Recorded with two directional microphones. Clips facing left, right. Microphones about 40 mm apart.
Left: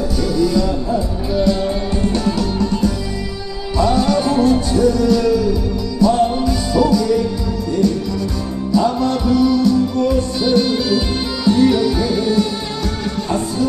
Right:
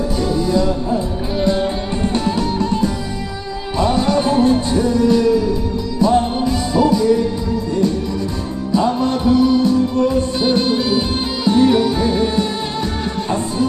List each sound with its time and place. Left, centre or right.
0.2 s music: right
8.7 s music: right
11.4 s music: right